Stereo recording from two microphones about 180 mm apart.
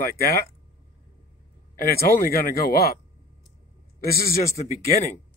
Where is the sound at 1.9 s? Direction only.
55° left (ahead or behind).